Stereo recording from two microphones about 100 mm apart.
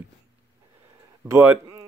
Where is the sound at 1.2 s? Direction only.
25° right (ahead or behind).